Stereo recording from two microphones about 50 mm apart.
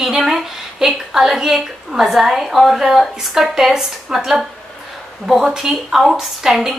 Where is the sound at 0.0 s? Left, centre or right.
Centre.